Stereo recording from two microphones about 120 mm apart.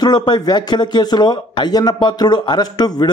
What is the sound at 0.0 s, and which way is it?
A man's voice, 35° left (ahead or behind).